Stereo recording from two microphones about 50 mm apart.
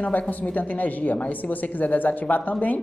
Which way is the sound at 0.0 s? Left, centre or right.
Left.